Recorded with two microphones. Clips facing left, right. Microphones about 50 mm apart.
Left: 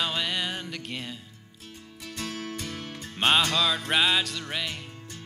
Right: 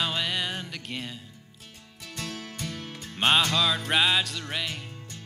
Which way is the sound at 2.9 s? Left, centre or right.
Centre.